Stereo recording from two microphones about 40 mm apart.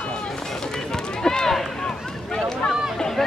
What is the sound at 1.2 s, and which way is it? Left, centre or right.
Run, centre.